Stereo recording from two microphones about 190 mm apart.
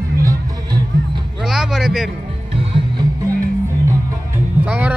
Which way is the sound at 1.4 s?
5° right (ahead or behind).